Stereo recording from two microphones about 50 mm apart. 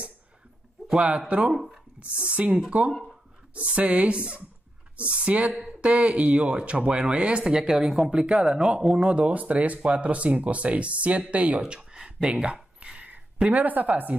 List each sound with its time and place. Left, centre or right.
0.9 s speech: right
9.2 s speech: right
12.8 s a sound: right